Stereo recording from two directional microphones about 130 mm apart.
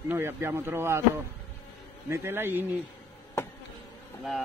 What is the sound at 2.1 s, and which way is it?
Speech, 20° right (ahead or behind).